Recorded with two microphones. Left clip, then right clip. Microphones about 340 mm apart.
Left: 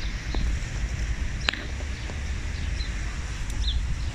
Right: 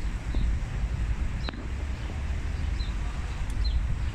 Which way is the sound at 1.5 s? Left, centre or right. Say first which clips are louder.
Left 13 dB; left.